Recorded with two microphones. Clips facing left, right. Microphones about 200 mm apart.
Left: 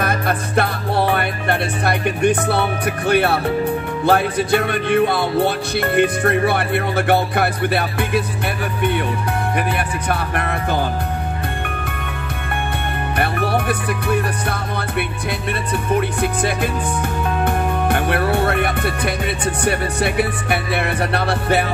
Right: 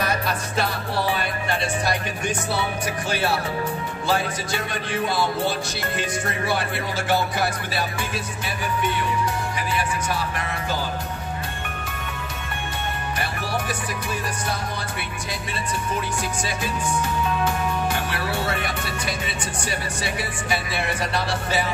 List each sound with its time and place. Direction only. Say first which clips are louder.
0.0 s music: left 5 dB; 55° left (ahead or behind)
9.6 s music: left 4 dB; 60° left (ahead or behind)
13.2 s music: left 10 dB; 60° left (ahead or behind)